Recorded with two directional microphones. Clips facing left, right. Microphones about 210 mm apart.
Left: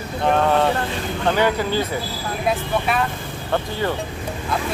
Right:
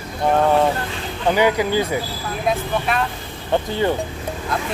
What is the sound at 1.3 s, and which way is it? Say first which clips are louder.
Speech: right 3 dB; 10° right (ahead or behind).